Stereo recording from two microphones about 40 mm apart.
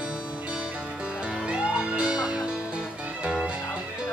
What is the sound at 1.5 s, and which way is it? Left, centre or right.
Music, right.